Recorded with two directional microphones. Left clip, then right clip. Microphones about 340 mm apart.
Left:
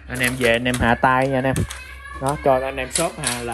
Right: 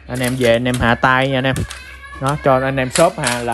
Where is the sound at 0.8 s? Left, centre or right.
Left.